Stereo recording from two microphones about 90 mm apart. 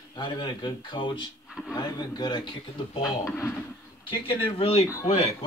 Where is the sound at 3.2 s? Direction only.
30° left (ahead or behind).